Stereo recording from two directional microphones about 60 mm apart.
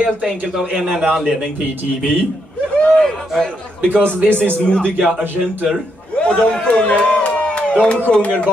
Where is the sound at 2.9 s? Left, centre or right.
Centre.